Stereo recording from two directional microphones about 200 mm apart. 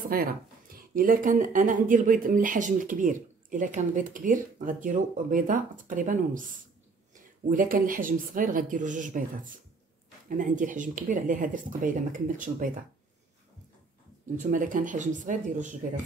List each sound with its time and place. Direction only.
0.1 s speech: 50° right (ahead or behind)
7.4 s speech: 45° right (ahead or behind)
14.3 s speech: 40° right (ahead or behind)